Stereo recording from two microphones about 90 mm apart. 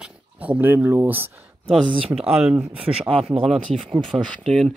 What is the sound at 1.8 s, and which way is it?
Speech, 90° right.